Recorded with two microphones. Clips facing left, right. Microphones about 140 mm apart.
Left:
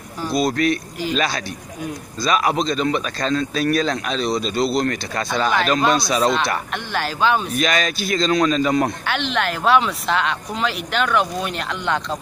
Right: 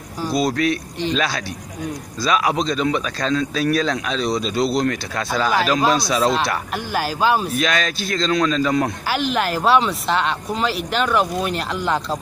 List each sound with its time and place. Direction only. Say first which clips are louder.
0.2 s a man's voice: even; centre (ahead or behind)